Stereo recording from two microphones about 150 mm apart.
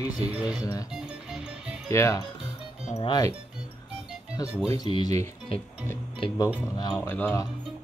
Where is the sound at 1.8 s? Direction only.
20° left (ahead or behind).